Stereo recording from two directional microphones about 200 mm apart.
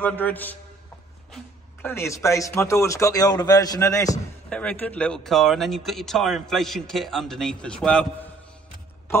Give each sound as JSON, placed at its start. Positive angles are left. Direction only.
{"t": 0.0, "sound": "speech", "side_deg": 10}